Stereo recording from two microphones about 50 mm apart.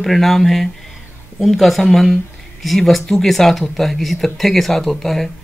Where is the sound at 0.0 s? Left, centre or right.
Centre.